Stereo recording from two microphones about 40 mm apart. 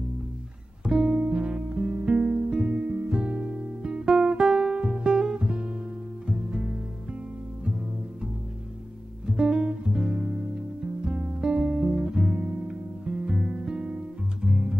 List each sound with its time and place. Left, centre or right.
0.8 s music: right
9.2 s guitar: right
11.1 s music: right